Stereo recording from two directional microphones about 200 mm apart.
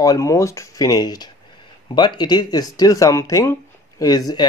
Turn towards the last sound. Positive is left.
turn(degrees=20)  # may be behind; listen again after turning